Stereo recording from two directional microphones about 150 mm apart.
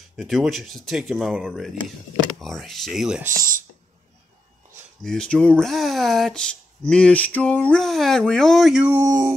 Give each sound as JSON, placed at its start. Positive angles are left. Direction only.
{"t": 0.1, "sound": "speech", "side_deg": 0}
{"t": 5.0, "sound": "speech", "side_deg": 5}
{"t": 8.9, "sound": "speech", "side_deg": -25}